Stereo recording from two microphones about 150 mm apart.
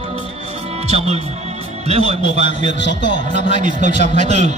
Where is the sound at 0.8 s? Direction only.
45° right (ahead or behind).